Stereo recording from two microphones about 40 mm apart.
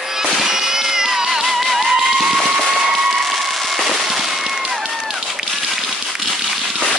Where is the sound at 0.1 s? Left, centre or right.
Centre.